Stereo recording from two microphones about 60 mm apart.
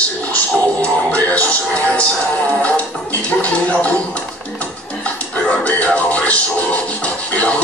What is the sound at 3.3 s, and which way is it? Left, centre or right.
Music, left.